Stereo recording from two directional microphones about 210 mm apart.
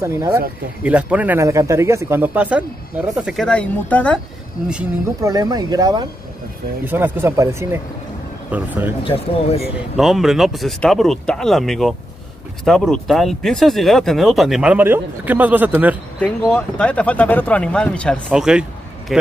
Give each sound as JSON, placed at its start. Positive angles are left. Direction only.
{"t": 0.0, "sound": "speech", "side_deg": -15}
{"t": 5.2, "sound": "speech", "side_deg": -15}
{"t": 9.0, "sound": "speech", "side_deg": 25}
{"t": 9.9, "sound": "speech", "side_deg": 0}
{"t": 16.2, "sound": "speech", "side_deg": 5}